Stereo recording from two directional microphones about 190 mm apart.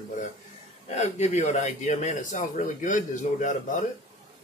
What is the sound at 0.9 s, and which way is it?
Speech, 35° left (ahead or behind).